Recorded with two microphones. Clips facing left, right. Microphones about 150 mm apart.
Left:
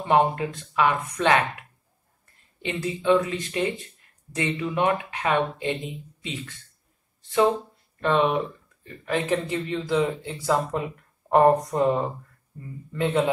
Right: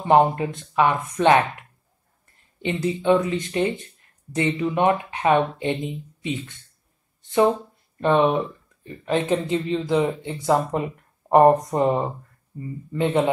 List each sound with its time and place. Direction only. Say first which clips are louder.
0.1 s speech: right 4 dB; 25° right (ahead or behind)
2.6 s speech: right 3 dB; 20° right (ahead or behind)